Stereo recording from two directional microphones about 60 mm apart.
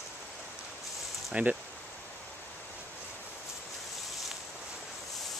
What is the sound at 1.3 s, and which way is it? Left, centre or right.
Speech, right.